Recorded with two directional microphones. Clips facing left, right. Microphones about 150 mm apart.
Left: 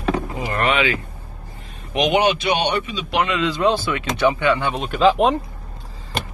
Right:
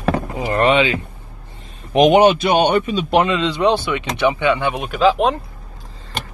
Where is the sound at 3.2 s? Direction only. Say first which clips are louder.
Right 2 dB; 25° right (ahead or behind).